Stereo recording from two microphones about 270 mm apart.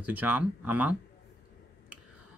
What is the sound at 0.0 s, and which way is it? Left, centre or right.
Speech, centre.